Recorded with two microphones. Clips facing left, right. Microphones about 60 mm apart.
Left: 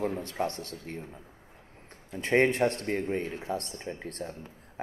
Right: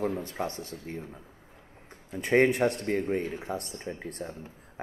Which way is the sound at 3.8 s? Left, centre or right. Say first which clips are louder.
Right 1 dB; centre.